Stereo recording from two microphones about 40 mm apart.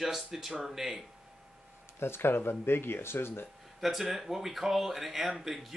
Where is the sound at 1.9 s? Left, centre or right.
Left.